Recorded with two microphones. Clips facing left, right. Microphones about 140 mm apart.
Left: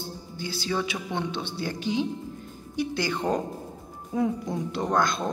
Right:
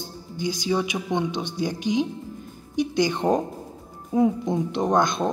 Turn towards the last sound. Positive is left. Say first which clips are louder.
# right 4 dB
turn(degrees=-20)  # may be behind; listen again after turning